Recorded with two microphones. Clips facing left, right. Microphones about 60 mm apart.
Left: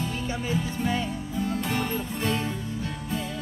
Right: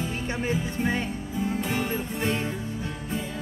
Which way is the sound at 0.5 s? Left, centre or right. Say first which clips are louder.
Left 1 dB; right.